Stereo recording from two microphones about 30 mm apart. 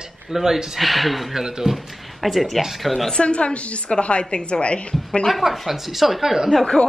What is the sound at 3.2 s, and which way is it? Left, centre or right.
A woman's voice, left.